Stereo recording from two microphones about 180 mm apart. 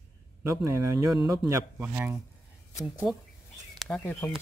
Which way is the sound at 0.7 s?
15° right (ahead or behind).